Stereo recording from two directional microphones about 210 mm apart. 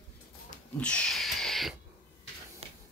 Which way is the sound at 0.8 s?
5° left (ahead or behind).